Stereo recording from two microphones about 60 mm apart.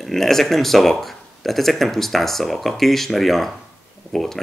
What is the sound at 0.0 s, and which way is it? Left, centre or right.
Speech, centre.